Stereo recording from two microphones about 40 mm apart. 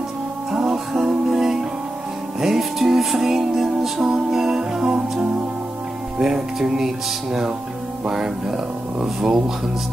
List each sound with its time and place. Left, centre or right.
0.7 s music: centre
6.2 s music: centre
8.1 s music: centre